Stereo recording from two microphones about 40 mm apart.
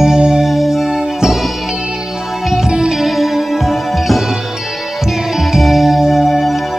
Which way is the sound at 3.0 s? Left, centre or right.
Centre.